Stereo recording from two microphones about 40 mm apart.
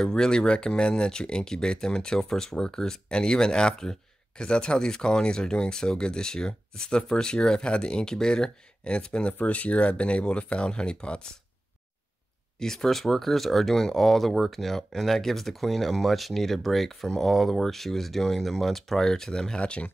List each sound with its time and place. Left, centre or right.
0.0 s speech: centre
9.4 s speech: left
12.5 s speech: centre